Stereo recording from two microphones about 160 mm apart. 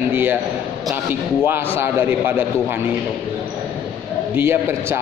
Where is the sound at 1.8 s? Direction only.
15° right (ahead or behind).